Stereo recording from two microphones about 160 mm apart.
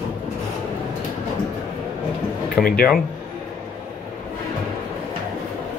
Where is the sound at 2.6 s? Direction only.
70° left (ahead or behind).